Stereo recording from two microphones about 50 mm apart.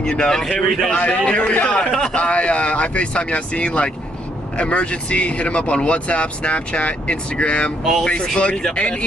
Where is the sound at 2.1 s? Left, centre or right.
Left.